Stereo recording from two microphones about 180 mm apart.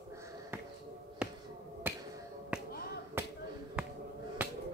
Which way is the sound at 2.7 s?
60° left (ahead or behind).